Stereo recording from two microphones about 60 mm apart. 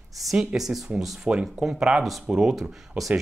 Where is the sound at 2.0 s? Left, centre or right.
Centre.